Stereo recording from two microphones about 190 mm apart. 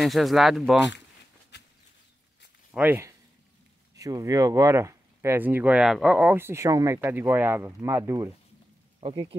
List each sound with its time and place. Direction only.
0.0 s speech: centre (ahead or behind)
1.5 s a sound: 65° left (ahead or behind)
2.7 s speech: 10° right (ahead or behind)
9.0 s speech: 25° right (ahead or behind)